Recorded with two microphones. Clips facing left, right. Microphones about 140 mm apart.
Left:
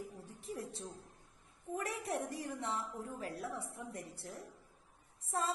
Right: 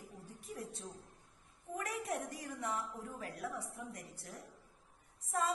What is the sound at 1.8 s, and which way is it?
A woman's voice, 30° left (ahead or behind).